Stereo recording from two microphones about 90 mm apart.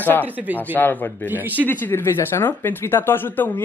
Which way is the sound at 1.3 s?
20° right (ahead or behind).